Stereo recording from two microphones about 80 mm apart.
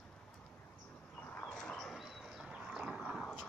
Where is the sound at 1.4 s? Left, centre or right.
Centre.